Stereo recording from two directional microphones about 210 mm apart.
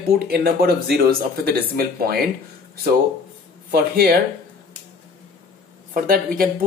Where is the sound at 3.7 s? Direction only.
45° right (ahead or behind).